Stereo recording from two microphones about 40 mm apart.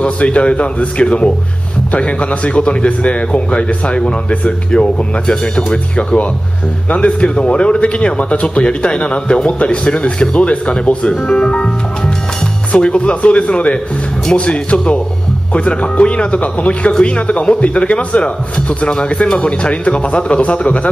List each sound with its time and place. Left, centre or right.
0.0 s speech: left
5.7 s speech: left